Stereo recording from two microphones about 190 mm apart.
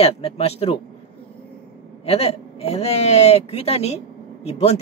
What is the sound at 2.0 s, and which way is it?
A man's voice, 30° left (ahead or behind).